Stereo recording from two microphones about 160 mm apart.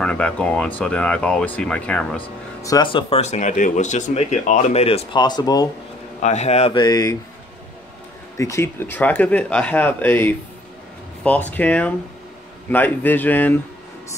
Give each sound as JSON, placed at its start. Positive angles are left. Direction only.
{"t": 0.0, "sound": "speech", "side_deg": 5}
{"t": 2.6, "sound": "speech", "side_deg": 25}
{"t": 3.2, "sound": "speech", "side_deg": 45}
{"t": 6.2, "sound": "speech", "side_deg": 45}
{"t": 6.7, "sound": "speech", "side_deg": 25}
{"t": 8.4, "sound": "speech", "side_deg": 20}
{"t": 11.5, "sound": "speech", "side_deg": 10}